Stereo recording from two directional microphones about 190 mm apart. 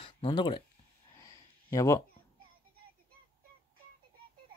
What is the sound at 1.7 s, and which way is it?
Speech, 15° left (ahead or behind).